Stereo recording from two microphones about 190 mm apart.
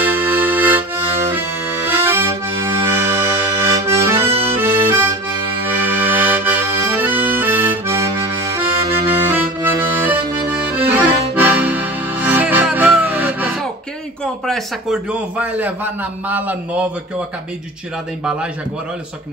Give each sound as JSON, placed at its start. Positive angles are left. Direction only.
{"t": 0.0, "sound": "accordion", "side_deg": -10}
{"t": 5.7, "sound": "accordion", "side_deg": -10}
{"t": 14.2, "sound": "a man's voice", "side_deg": 0}